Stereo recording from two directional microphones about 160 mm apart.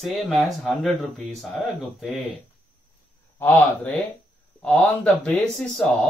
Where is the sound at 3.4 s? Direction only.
10° left (ahead or behind).